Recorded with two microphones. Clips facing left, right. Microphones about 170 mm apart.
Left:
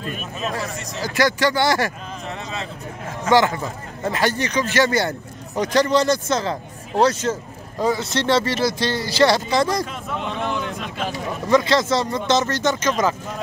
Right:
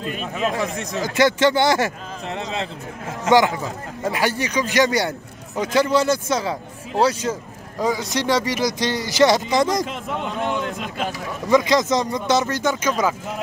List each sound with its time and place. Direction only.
0.1 s a sound: 90° right
1.0 s speech: 20° right (ahead or behind)
3.3 s speech: 15° right (ahead or behind)
10.2 s a man's voice: centre (ahead or behind)
11.4 s speech: 15° right (ahead or behind)